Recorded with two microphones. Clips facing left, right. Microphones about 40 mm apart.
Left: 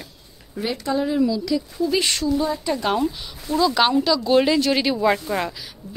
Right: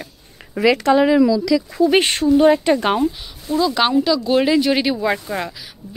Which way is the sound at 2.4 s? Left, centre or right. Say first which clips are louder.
Right 10 dB; right.